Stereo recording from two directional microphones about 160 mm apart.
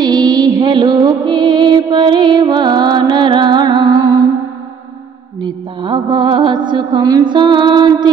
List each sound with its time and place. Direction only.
0.0 s music: 25° right (ahead or behind)
5.4 s music: 30° right (ahead or behind)